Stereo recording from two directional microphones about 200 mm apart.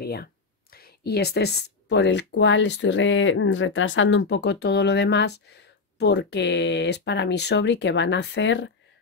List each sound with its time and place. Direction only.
0.0 s speech: 50° left (ahead or behind)